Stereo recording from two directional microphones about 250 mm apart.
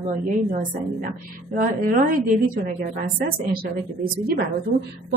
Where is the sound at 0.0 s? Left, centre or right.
Right.